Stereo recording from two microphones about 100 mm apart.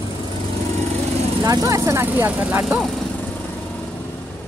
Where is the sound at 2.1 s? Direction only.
15° right (ahead or behind).